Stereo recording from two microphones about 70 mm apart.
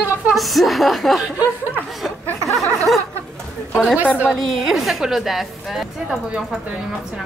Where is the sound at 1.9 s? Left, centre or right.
Centre.